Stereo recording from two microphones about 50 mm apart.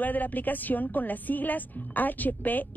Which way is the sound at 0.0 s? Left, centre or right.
Left.